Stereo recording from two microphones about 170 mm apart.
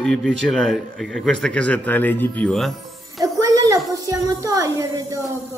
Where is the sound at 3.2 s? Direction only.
20° right (ahead or behind).